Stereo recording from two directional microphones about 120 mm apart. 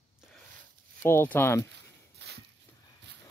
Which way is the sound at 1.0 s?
20° left (ahead or behind).